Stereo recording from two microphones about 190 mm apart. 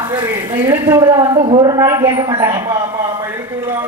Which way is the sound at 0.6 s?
15° right (ahead or behind).